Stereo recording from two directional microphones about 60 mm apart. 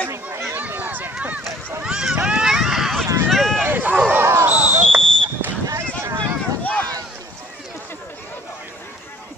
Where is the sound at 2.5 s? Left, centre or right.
Centre.